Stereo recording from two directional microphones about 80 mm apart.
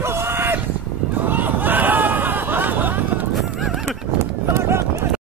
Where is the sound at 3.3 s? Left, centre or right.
Centre.